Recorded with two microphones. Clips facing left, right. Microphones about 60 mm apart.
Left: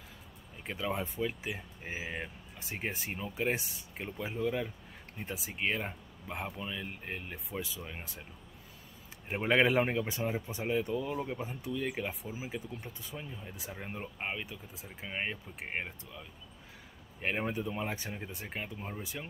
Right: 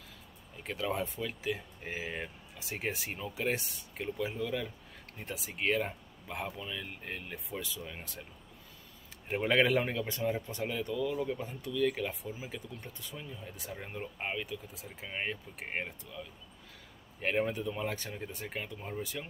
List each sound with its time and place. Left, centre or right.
0.7 s speech: centre
7.3 s speech: centre
9.3 s speech: centre
10.7 s speech: left
11.3 s speech: centre
12.1 s speech: centre
12.4 s speech: centre
17.2 s speech: centre